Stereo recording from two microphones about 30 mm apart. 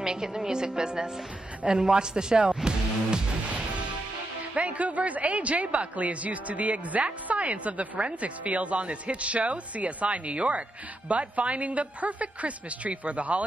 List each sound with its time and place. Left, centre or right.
0.0 s speech: right
4.6 s speech: right